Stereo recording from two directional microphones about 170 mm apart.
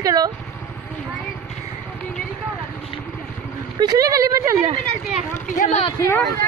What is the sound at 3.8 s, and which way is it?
Speech, 25° right (ahead or behind).